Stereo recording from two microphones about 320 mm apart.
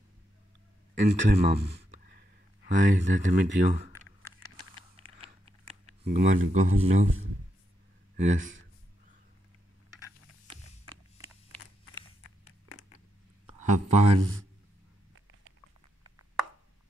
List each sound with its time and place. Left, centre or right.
1.0 s speech: right
1.7 s a sound: right
2.6 s speech: right
3.4 s speech: right
4.9 s a sound: centre; by 6.5 s right
6.5 s speech: right
8.2 s speech: right
13.6 s speech: right